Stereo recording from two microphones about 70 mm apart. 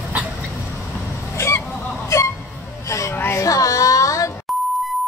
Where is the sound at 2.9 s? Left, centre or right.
Left.